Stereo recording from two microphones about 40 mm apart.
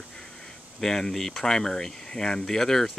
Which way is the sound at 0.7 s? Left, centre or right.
Centre.